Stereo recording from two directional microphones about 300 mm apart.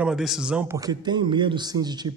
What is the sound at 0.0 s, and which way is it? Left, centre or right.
A man's voice, centre.